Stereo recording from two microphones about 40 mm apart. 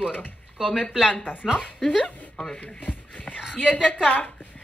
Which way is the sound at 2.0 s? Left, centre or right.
Left.